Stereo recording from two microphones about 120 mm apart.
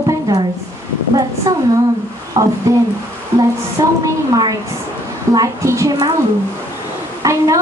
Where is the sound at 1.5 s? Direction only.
25° right (ahead or behind).